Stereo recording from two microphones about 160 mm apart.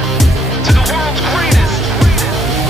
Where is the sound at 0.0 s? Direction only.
Centre (ahead or behind).